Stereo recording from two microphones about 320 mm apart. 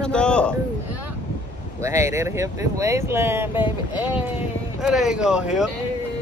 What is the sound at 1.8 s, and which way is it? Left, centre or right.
Speech, centre.